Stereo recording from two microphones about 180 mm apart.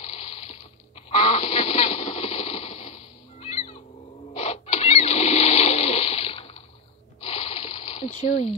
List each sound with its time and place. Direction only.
0.0 s water: 35° left (ahead or behind)
1.1 s a sound: 35° left (ahead or behind)
7.2 s water: 30° left (ahead or behind)
8.1 s speech: 45° left (ahead or behind)